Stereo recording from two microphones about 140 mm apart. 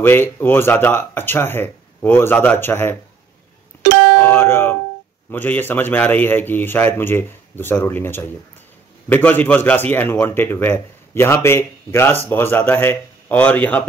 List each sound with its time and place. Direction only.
0.0 s a man's voice: 15° left (ahead or behind)
4.3 s music: 15° left (ahead or behind)
5.3 s a man's voice: 15° left (ahead or behind)